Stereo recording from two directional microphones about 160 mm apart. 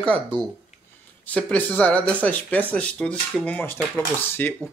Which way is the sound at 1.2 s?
10° left (ahead or behind).